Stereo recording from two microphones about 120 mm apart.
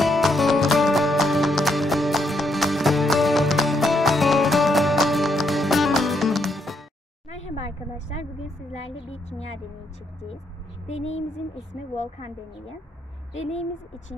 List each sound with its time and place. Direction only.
0.0 s music: centre (ahead or behind)
7.2 s a sound: 65° left (ahead or behind)
10.9 s speech: 65° left (ahead or behind)